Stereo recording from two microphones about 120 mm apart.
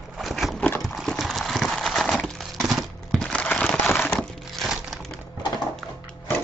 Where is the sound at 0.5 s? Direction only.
10° left (ahead or behind).